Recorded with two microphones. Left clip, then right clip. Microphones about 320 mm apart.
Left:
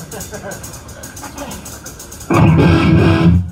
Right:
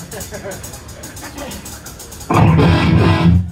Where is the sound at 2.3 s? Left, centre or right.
Right.